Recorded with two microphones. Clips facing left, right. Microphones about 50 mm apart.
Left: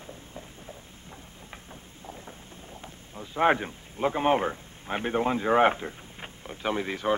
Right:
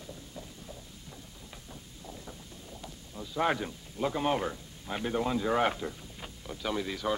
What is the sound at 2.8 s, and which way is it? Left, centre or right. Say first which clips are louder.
Speech: even; left.